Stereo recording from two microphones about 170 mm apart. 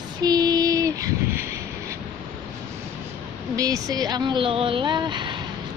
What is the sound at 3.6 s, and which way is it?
Female singing, 20° right (ahead or behind).